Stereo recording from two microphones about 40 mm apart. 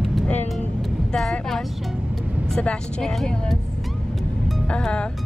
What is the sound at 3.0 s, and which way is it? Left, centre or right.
Speech, centre.